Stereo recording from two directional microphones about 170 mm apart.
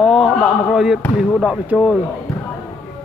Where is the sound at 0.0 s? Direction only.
Centre (ahead or behind).